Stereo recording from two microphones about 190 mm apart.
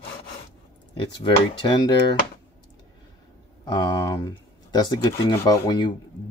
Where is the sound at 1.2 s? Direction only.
25° left (ahead or behind).